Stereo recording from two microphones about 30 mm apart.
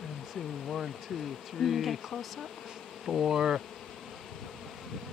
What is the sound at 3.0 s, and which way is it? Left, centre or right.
Bee, centre.